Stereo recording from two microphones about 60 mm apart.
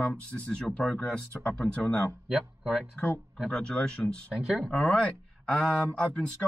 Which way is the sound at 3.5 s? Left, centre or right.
Centre.